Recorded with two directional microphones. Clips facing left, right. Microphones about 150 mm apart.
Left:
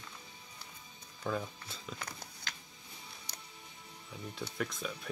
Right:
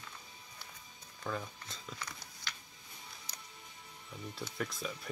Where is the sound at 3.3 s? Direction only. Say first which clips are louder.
Left 2 dB; 65° left (ahead or behind).